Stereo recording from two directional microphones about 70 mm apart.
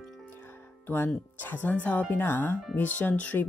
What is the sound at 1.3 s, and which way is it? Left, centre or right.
Speech, left.